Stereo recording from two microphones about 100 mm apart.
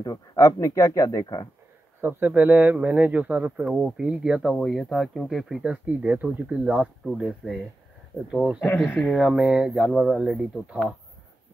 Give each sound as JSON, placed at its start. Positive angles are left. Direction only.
{"t": 0.0, "sound": "speech", "side_deg": 35}
{"t": 2.0, "sound": "speech", "side_deg": -20}
{"t": 7.2, "sound": "speech", "side_deg": 0}
{"t": 8.6, "sound": "speech", "side_deg": 15}
{"t": 9.1, "sound": "speech", "side_deg": -5}